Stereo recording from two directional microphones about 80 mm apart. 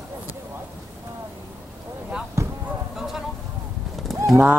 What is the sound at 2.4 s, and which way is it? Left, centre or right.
Basketball bounce, right.